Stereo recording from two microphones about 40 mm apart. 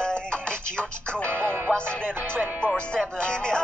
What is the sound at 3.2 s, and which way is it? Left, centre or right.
Music, left.